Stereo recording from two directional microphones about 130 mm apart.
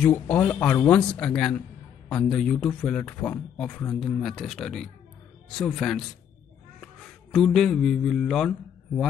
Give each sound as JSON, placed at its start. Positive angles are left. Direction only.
{"t": 0.0, "sound": "a man's voice", "side_deg": 10}